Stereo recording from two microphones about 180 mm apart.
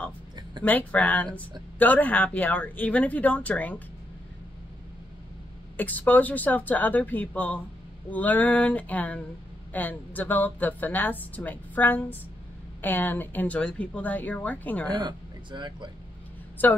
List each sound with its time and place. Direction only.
0.7 s a woman's voice: 10° left (ahead or behind)
5.8 s a woman's voice: 10° left (ahead or behind)
14.9 s speech: 25° right (ahead or behind)